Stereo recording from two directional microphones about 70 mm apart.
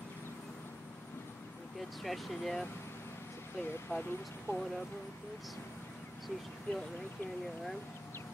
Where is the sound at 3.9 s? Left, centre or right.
Left.